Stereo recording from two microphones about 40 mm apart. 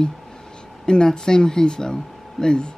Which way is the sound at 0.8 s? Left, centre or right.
Centre.